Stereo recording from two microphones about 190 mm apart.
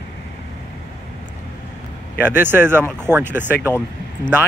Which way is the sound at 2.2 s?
10° right (ahead or behind).